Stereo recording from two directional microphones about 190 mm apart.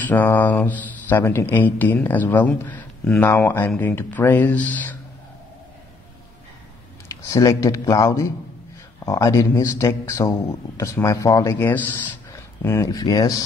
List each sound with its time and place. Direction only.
0.0 s speech: 10° left (ahead or behind)
7.1 s speech: 15° left (ahead or behind)